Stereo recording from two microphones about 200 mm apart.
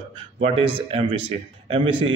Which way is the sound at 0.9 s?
25° right (ahead or behind).